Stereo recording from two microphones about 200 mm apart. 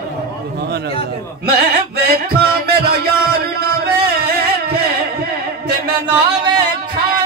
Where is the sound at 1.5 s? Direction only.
50° right (ahead or behind).